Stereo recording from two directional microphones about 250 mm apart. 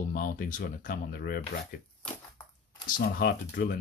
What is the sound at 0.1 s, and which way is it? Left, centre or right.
Speech, left.